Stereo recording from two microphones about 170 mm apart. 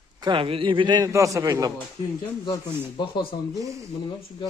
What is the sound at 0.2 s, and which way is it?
A man's voice, 30° right (ahead or behind).